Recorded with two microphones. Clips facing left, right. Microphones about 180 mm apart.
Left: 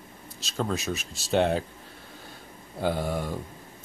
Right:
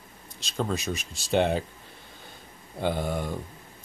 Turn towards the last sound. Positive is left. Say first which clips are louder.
# even
turn(degrees=0)  # may be behind; listen again after turning